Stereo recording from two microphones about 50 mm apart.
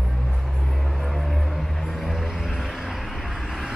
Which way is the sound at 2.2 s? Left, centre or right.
Centre.